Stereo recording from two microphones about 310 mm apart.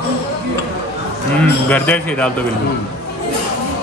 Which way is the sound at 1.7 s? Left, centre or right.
Centre.